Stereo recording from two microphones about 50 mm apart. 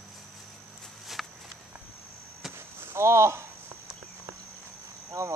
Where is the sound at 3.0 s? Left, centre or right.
Right.